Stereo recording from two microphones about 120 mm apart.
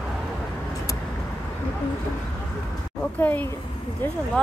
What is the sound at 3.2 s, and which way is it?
Speech, 15° left (ahead or behind).